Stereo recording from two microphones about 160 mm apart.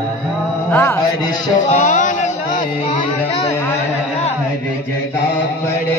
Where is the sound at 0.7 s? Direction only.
15° left (ahead or behind).